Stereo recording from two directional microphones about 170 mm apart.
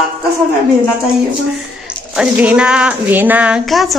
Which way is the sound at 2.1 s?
5° right (ahead or behind).